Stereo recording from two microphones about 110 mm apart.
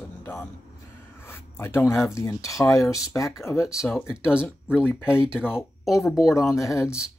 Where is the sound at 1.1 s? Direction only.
20° left (ahead or behind).